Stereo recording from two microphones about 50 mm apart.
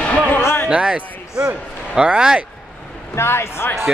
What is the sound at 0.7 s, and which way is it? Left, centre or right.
A man's voice, right.